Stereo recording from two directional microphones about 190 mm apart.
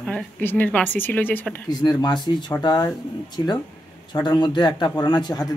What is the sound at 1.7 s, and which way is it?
Speech, 25° left (ahead or behind).